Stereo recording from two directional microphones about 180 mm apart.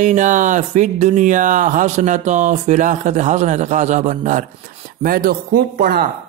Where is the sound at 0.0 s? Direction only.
45° right (ahead or behind).